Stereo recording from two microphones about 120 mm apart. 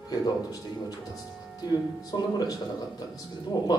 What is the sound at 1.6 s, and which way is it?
Speech, 35° left (ahead or behind).